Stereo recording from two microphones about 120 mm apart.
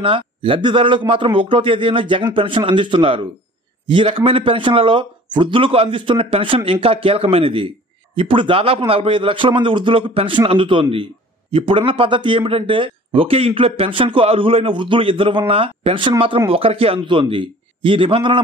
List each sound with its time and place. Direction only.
0.0 s speech: 50° right (ahead or behind)